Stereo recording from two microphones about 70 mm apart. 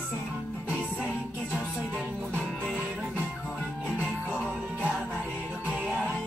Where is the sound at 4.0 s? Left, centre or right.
Left.